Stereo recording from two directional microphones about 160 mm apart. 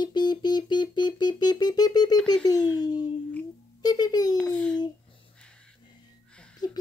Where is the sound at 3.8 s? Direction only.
25° left (ahead or behind).